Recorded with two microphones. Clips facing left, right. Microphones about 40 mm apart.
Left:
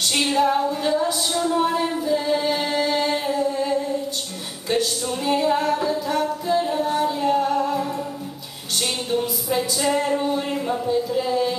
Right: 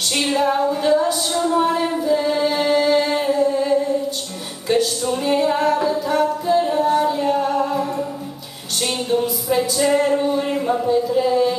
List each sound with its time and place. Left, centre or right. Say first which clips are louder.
0.1 s music: right 1 dB; centre
4.6 s singing: right 4 dB; centre
8.8 s music: right 4 dB; centre